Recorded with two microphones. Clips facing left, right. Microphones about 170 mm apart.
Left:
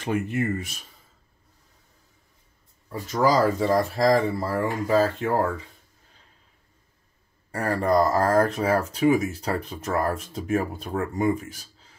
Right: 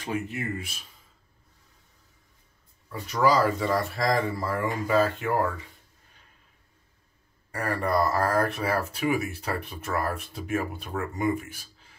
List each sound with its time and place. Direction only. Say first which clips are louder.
0.0 s speech: left 6 dB; 50° left (ahead or behind)
2.9 s speech: left 1 dB; 40° left (ahead or behind)
7.6 s speech: left 4 dB; 35° left (ahead or behind)